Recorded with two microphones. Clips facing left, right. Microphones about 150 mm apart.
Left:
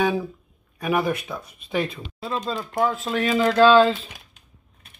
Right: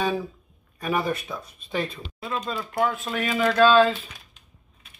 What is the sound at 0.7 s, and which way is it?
Speech, 10° left (ahead or behind).